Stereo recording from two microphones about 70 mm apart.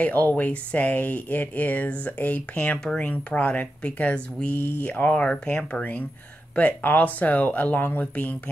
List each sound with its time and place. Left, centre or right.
0.0 s speech: left